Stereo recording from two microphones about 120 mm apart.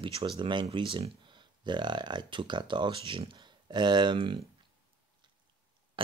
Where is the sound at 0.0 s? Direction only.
45° right (ahead or behind).